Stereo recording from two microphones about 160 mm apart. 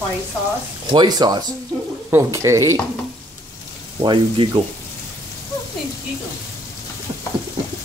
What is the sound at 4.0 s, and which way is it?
Speech, 30° right (ahead or behind).